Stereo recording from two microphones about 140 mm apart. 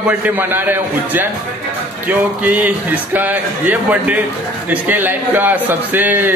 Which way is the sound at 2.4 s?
10° right (ahead or behind).